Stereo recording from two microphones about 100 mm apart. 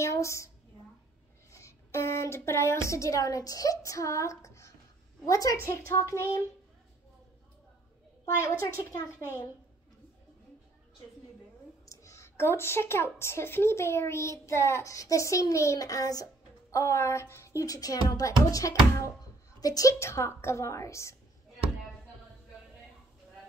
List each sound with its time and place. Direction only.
0.0 s a sound: 30° left (ahead or behind)
1.5 s a woman's voice: 30° left (ahead or behind)
8.4 s a woman's voice: 30° left (ahead or behind)
11.8 s a woman's voice: 30° left (ahead or behind)
16.7 s a woman's voice: 25° left (ahead or behind)